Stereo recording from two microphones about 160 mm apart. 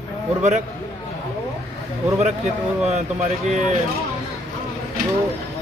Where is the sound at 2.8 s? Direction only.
40° right (ahead or behind).